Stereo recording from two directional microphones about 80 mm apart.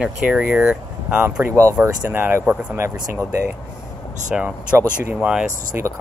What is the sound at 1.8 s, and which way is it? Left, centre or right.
Speech, right.